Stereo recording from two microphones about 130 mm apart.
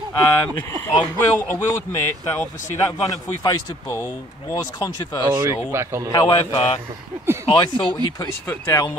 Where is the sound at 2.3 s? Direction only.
25° left (ahead or behind).